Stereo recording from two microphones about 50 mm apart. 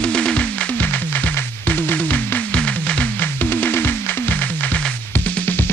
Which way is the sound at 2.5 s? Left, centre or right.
Left.